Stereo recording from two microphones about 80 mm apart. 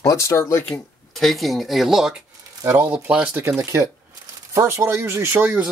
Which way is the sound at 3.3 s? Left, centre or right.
Right.